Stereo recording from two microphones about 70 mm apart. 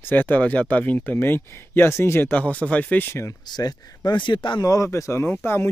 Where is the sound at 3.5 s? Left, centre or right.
Left.